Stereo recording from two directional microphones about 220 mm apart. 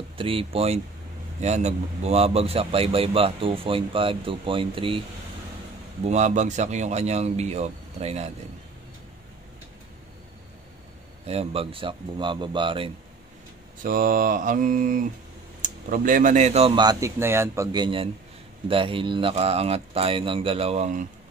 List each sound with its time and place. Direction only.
0.2 s a man's voice: 25° right (ahead or behind)
6.0 s speech: 30° right (ahead or behind)
11.2 s a man's voice: 25° right (ahead or behind)
13.8 s a man's voice: 40° right (ahead or behind)